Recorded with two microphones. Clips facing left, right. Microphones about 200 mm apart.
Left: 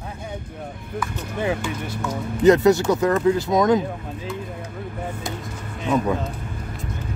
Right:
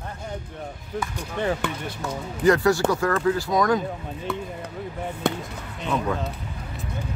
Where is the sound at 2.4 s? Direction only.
20° left (ahead or behind).